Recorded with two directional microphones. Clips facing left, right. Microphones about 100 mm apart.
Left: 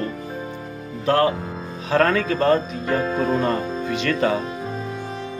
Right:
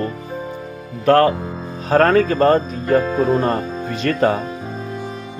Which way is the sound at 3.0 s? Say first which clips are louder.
Right 3 dB; centre (ahead or behind).